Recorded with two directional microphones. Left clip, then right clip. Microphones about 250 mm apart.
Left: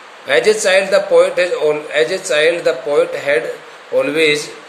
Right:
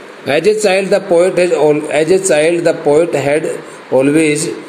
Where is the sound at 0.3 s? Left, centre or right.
Centre.